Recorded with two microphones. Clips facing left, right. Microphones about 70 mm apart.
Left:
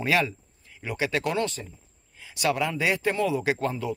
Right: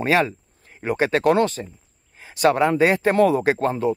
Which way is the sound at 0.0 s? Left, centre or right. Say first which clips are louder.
Right 5 dB; right.